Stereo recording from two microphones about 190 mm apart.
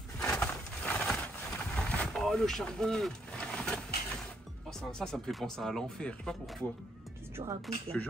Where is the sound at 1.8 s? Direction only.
5° left (ahead or behind).